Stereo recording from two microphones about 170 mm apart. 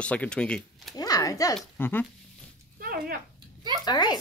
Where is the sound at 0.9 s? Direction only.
20° left (ahead or behind).